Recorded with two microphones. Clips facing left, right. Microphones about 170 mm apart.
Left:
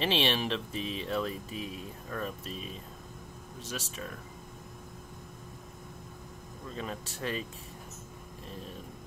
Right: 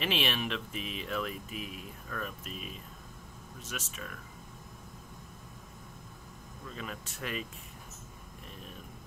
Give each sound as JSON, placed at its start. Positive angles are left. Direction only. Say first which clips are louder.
{"t": 0.0, "sound": "speech", "louder": "left 3 dB", "side_deg": 30}
{"t": 6.7, "sound": "speech", "louder": "left 4 dB", "side_deg": 35}